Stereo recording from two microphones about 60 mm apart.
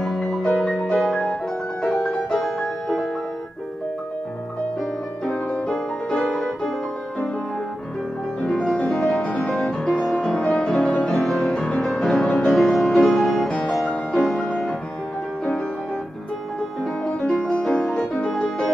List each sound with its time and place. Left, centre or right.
0.0 s music: centre
5.7 s music: centre
8.4 s music: centre
9.0 s music: centre
11.1 s music: centre
17.3 s music: centre